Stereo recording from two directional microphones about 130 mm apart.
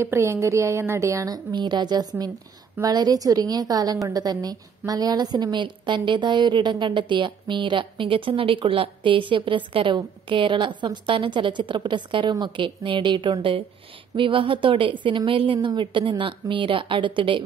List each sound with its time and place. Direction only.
0.0 s a woman's voice: 20° right (ahead or behind); by 17.4 s 40° right (ahead or behind)